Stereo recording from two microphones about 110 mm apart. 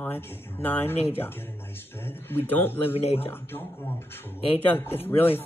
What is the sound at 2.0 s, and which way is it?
Speech, 20° left (ahead or behind).